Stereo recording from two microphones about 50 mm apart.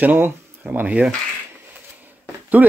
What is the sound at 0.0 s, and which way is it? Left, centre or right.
Speech, right.